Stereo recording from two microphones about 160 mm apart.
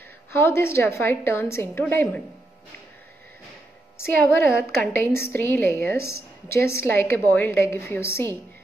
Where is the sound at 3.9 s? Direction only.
15° left (ahead or behind).